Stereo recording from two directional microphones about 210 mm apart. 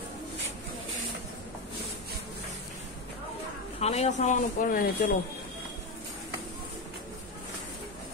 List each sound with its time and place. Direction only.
3.8 s speech: 30° left (ahead or behind)